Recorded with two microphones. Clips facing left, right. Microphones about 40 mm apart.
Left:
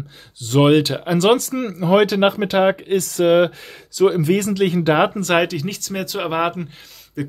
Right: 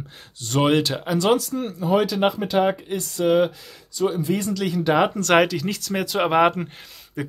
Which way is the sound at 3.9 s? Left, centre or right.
Left.